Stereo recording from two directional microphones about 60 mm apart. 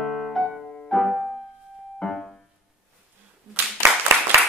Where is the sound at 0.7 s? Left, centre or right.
Centre.